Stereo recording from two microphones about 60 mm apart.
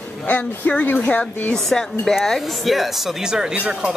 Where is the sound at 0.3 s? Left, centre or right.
Left.